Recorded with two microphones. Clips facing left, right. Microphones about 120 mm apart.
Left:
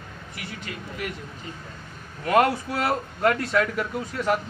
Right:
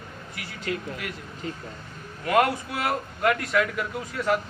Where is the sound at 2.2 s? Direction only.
25° left (ahead or behind).